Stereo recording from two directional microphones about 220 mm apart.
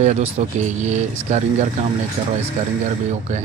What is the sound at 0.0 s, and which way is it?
Speech, 30° right (ahead or behind).